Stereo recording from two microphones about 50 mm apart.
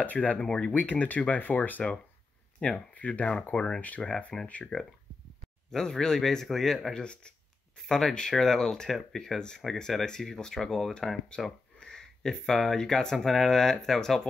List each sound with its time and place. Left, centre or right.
0.0 s speech: left
0.5 s speech: centre
0.7 s speech: left
3.5 s speech: centre
4.7 s speech: centre
5.7 s speech: centre